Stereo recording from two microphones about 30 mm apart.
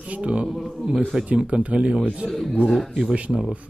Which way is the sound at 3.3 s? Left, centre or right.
Centre.